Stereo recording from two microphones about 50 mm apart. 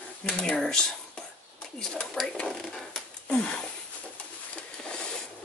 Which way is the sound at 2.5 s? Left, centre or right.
Centre.